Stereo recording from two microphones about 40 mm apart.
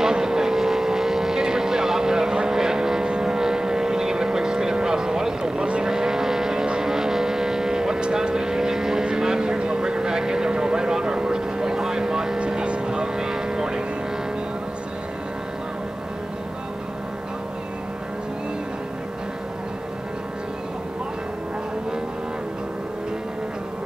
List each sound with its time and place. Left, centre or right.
0.0 s vehicle: centre